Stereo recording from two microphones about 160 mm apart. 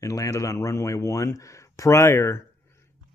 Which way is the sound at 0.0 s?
20° left (ahead or behind).